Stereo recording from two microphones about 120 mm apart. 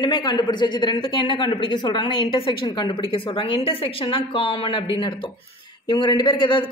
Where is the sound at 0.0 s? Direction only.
35° left (ahead or behind).